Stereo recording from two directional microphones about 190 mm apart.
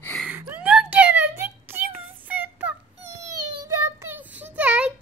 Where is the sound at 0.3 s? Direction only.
10° right (ahead or behind).